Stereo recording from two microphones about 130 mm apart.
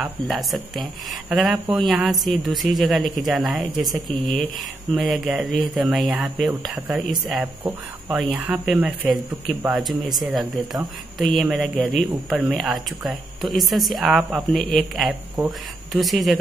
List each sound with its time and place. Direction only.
0.0 s speech: centre (ahead or behind)
8.2 s speech: centre (ahead or behind)